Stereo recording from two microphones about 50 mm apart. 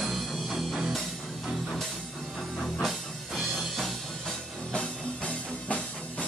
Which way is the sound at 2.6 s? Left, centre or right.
Centre.